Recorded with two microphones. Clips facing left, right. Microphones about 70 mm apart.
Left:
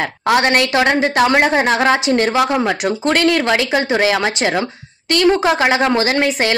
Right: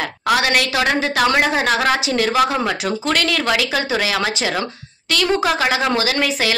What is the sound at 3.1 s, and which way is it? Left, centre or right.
A woman's voice, left.